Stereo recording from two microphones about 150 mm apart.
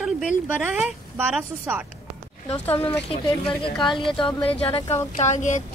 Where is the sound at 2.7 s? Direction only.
15° left (ahead or behind).